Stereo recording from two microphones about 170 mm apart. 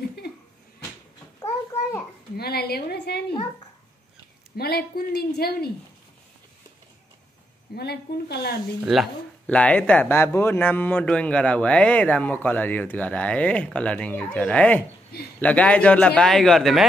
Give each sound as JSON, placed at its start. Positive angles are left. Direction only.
{"t": 1.7, "sound": "a sound", "side_deg": 15}
{"t": 2.3, "sound": "a woman's voice", "side_deg": 70}
{"t": 4.6, "sound": "a woman's voice", "side_deg": 65}
{"t": 7.7, "sound": "a woman's voice", "side_deg": 70}
{"t": 8.9, "sound": "a man's voice", "side_deg": 0}